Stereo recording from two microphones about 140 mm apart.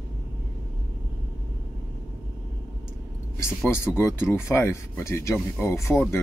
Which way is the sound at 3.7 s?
15° left (ahead or behind).